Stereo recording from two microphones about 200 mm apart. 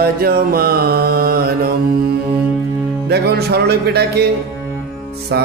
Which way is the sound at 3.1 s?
55° right (ahead or behind).